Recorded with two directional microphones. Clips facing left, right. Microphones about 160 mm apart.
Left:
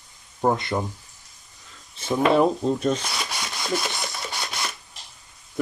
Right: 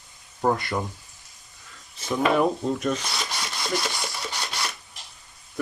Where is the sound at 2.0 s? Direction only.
30° left (ahead or behind).